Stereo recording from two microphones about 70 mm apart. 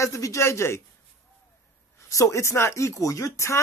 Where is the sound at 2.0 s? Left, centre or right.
Left.